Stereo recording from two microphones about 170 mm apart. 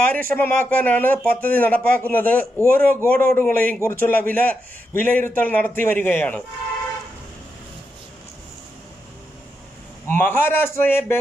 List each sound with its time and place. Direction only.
0.3 s speech: 10° left (ahead or behind)
10.0 s speech: 10° left (ahead or behind)